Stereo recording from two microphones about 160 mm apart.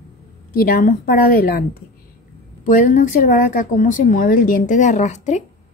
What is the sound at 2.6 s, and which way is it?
A woman's voice, 55° left (ahead or behind).